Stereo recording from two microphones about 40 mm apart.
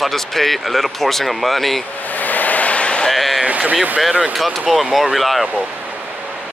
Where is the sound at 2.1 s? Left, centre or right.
Left.